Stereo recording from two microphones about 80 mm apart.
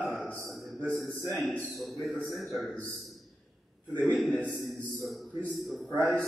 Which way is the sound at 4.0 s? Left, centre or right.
Centre.